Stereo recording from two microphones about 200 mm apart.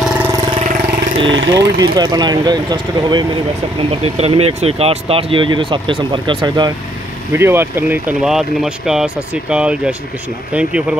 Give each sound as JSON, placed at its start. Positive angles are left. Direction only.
{"t": 0.3, "sound": "vehicle", "side_deg": -25}
{"t": 1.3, "sound": "speech", "side_deg": -65}
{"t": 1.8, "sound": "speech", "side_deg": -20}